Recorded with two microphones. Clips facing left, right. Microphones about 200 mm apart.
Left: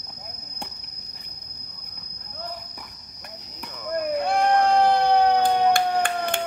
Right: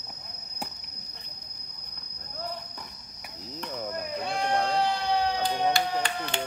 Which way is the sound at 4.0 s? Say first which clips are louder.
Left 11 dB; 60° left (ahead or behind).